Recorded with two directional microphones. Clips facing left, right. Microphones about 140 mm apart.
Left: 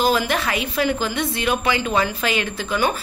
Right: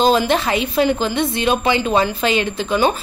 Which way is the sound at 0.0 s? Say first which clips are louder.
Right 4 dB; 25° right (ahead or behind).